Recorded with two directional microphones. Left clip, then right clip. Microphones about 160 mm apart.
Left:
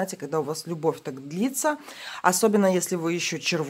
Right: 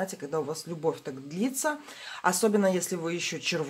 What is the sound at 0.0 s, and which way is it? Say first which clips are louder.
Speech: left 4 dB; 40° left (ahead or behind).